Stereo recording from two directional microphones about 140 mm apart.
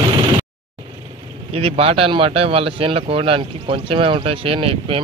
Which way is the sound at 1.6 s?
45° right (ahead or behind).